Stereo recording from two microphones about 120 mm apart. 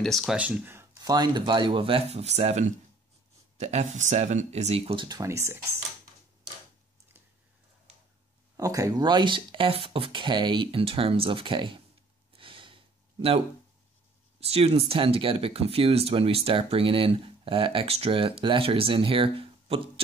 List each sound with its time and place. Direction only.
0.0 s speech: centre (ahead or behind)
0.4 s speech: 15° right (ahead or behind)
0.9 s speech: 35° right (ahead or behind); by 5.0 s 55° right (ahead or behind)
5.0 s speech: 30° right (ahead or behind)
8.5 s speech: 30° right (ahead or behind)
12.3 s gasp: 45° right (ahead or behind)
14.4 s speech: 55° right (ahead or behind)